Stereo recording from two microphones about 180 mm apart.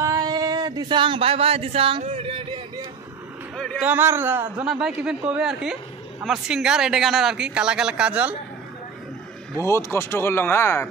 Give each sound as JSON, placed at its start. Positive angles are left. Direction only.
{"t": 0.0, "sound": "a sound", "side_deg": -20}
{"t": 3.5, "sound": "speech", "side_deg": 5}
{"t": 3.8, "sound": "speech", "side_deg": -10}
{"t": 9.6, "sound": "speech", "side_deg": 15}